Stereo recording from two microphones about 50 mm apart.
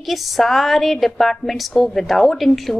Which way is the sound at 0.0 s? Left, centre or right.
Centre.